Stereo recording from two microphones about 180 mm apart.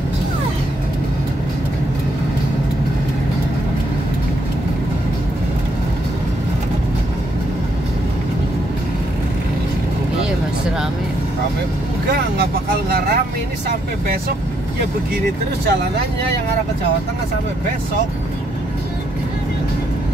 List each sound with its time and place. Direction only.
12.9 s vehicle: 60° right (ahead or behind)